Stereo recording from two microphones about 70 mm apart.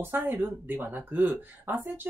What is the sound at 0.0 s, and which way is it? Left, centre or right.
Speech, right.